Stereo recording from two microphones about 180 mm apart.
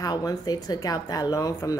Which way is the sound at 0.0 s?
20° left (ahead or behind).